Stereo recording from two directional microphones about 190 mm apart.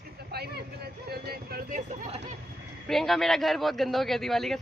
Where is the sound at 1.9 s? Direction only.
40° right (ahead or behind).